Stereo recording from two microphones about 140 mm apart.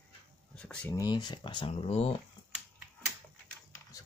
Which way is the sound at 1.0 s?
30° left (ahead or behind).